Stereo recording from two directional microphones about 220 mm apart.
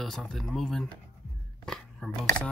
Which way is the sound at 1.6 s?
5° left (ahead or behind).